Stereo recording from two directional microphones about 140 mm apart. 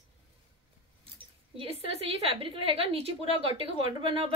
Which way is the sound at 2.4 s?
40° right (ahead or behind).